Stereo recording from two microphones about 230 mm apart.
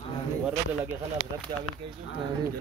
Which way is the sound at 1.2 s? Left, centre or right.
Right.